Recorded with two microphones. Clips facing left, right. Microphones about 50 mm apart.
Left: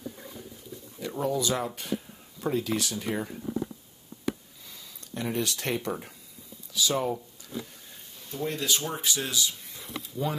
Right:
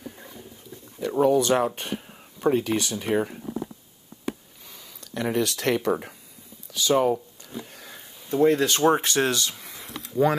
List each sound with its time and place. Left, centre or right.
1.2 s speech: right
4.6 s speech: right
6.7 s a sound: right
8.4 s speech: right